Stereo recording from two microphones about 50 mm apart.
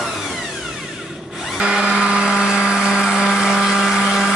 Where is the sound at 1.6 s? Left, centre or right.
Centre.